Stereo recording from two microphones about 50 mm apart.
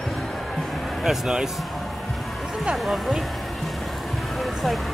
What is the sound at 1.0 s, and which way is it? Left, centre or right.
Speech, centre.